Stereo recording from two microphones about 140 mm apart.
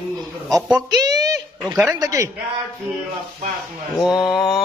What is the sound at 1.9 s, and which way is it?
Speech, 25° right (ahead or behind).